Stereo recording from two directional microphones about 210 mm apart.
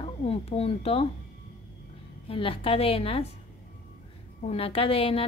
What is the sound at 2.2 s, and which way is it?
A woman's voice, 25° left (ahead or behind).